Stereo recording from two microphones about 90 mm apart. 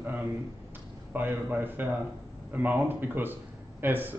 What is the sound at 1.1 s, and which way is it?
Speech, 20° right (ahead or behind).